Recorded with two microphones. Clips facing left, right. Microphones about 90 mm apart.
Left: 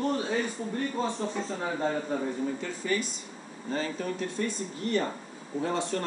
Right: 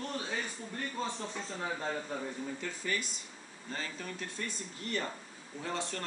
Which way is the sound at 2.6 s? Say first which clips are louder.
Left 6 dB; 5° left (ahead or behind).